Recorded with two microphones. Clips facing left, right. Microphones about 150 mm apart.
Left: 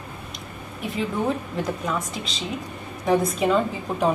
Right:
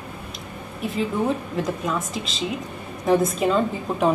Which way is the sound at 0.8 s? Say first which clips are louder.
Right 2 dB; centre (ahead or behind).